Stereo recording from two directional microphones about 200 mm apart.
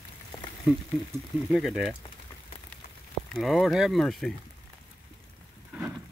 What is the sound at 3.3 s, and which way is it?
Speech, centre (ahead or behind).